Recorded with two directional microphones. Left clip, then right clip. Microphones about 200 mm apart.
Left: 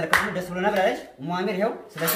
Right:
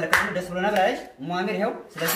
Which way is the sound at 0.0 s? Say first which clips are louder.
Even; 20° left (ahead or behind).